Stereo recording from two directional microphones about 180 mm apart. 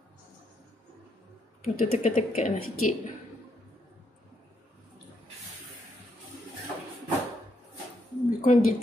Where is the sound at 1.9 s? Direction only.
35° left (ahead or behind).